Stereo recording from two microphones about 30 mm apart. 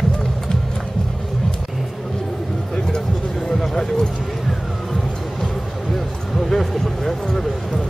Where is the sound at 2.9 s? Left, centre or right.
Centre.